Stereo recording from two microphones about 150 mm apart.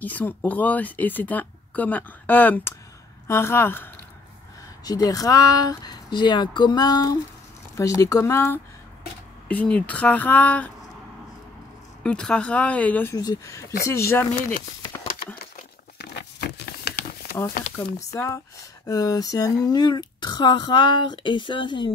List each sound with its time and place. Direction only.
0.0 s speech: 10° left (ahead or behind)
12.0 s speech: 5° left (ahead or behind)
13.1 s speech: 25° left (ahead or behind)
16.0 s patter: 90° left
17.7 s speech: 15° left (ahead or behind); by 21.9 s 30° left (ahead or behind)